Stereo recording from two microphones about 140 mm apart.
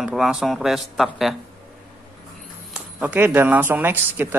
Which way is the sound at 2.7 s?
10° right (ahead or behind).